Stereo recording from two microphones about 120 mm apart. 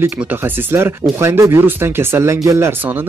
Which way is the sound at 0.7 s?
20° right (ahead or behind).